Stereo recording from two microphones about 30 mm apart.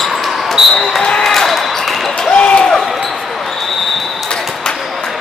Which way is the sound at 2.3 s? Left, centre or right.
Left.